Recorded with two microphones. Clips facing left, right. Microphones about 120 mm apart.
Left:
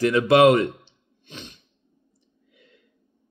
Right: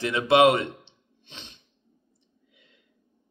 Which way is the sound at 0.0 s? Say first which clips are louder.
Left 3 dB; 25° right (ahead or behind).